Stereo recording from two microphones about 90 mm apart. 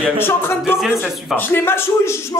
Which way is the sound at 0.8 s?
5° right (ahead or behind).